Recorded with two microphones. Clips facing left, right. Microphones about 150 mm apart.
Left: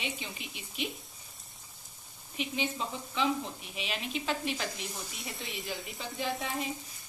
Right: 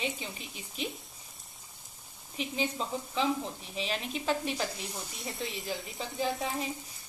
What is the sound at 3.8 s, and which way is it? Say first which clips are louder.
Speech: right 2 dB; 40° right (ahead or behind).